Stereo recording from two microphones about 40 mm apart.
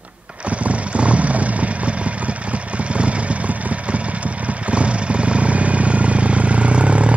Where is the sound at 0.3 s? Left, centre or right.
Right.